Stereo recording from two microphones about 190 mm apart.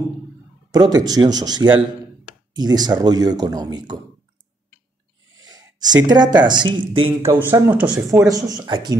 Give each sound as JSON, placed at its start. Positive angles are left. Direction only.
{"t": 0.7, "sound": "speech", "side_deg": -20}
{"t": 5.4, "sound": "a sound", "side_deg": -20}
{"t": 6.4, "sound": "speech", "side_deg": -25}
{"t": 7.2, "sound": "speech", "side_deg": -15}
{"t": 8.3, "sound": "speech", "side_deg": -20}